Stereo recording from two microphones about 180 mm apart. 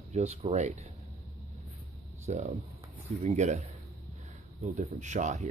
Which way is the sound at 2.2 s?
40° right (ahead or behind).